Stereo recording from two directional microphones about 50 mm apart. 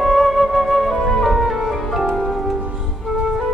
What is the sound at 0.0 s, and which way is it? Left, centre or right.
Music, centre.